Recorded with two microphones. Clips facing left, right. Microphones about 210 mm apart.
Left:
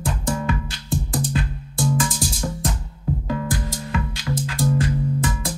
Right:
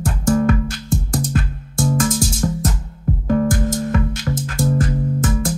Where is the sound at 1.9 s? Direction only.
50° right (ahead or behind).